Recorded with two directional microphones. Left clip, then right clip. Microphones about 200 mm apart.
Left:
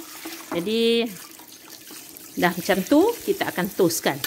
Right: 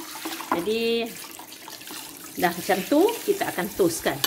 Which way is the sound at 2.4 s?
60° left (ahead or behind).